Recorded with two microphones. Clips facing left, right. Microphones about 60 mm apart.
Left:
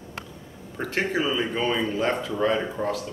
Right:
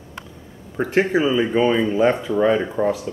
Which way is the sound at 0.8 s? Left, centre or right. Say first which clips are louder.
Right 7 dB; centre.